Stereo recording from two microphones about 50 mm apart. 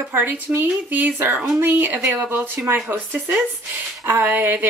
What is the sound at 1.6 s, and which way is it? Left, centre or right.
Speech, right.